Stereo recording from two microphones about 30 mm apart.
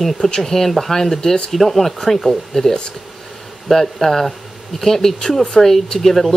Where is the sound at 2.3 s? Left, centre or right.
Centre.